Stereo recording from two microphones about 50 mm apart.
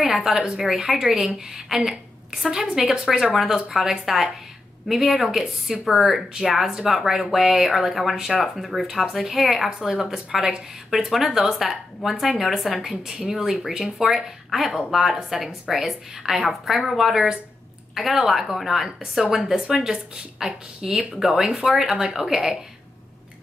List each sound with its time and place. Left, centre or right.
0.0 s a woman's voice: centre
12.9 s speech: centre
18.9 s a woman's voice: centre